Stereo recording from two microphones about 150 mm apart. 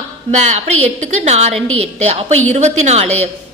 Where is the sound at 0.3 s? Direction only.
50° right (ahead or behind).